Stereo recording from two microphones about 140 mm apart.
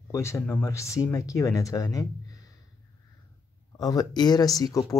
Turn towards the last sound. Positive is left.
turn(degrees=25)  # may be behind; listen again after turning